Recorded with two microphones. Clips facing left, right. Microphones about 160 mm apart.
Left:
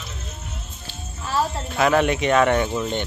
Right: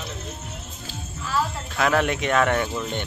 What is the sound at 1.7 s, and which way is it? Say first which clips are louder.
Speech: left 3 dB; 5° left (ahead or behind).